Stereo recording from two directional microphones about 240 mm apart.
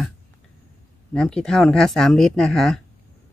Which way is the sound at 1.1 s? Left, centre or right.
Centre.